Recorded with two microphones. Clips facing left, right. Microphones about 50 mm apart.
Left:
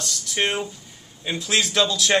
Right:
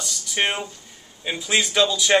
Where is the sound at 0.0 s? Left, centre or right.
Centre.